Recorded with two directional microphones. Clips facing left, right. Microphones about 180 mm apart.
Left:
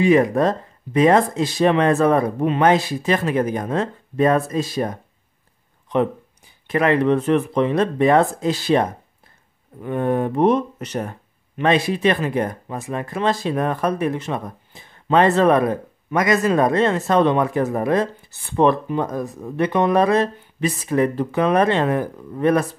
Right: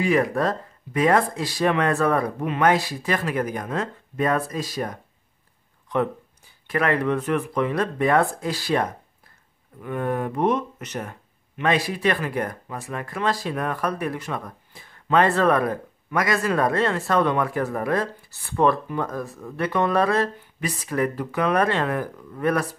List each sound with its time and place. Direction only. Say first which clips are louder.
0.0 s speech: left 6 dB; 20° left (ahead or behind)